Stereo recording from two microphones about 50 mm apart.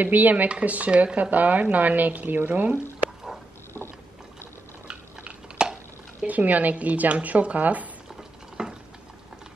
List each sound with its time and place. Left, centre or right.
0.0 s speech: right
4.8 s dishes: centre
6.2 s speech: right
8.6 s stir: centre